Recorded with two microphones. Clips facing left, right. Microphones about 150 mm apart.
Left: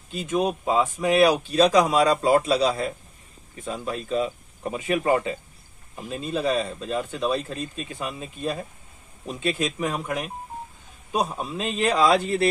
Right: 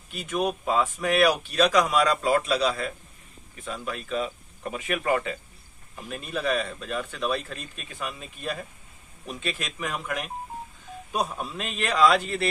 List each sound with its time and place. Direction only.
0.1 s speech: 25° left (ahead or behind)